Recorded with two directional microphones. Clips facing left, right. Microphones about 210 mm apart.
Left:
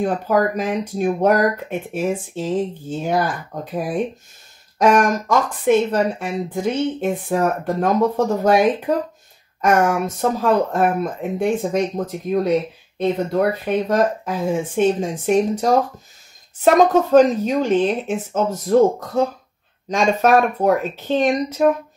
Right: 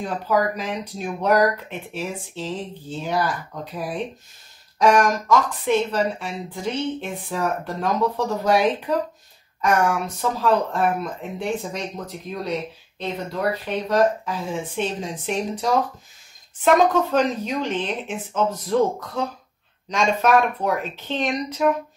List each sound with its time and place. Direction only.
0.0 s speech: 50° left (ahead or behind)